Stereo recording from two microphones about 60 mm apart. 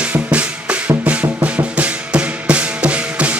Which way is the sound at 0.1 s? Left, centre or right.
Centre.